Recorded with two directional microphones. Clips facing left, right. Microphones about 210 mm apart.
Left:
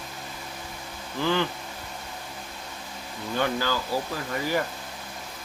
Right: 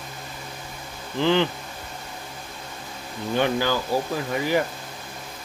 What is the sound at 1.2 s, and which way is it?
Speech, 25° right (ahead or behind).